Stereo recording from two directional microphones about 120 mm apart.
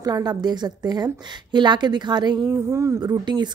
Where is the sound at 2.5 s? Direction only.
25° right (ahead or behind).